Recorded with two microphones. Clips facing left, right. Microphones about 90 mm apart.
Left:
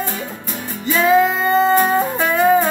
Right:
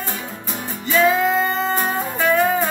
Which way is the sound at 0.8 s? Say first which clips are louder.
Left 3 dB; 10° left (ahead or behind).